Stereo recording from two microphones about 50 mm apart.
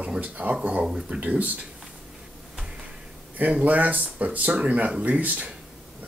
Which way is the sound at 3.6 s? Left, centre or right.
Right.